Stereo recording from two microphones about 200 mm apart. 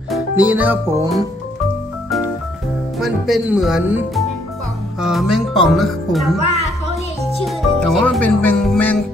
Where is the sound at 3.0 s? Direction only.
Centre (ahead or behind).